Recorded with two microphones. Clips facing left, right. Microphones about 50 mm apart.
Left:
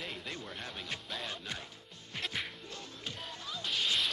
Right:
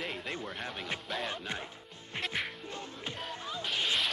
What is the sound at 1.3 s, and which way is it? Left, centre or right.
Speech, right.